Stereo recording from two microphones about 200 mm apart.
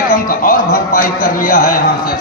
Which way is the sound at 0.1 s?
45° left (ahead or behind).